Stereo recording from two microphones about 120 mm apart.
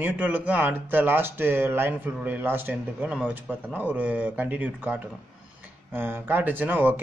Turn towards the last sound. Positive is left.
turn(degrees=-15)  # may be behind; listen again after turning